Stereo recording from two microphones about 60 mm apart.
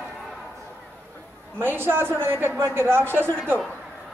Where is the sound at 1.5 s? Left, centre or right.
Right.